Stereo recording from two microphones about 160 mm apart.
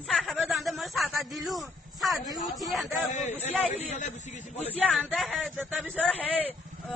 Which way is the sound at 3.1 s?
45° left (ahead or behind).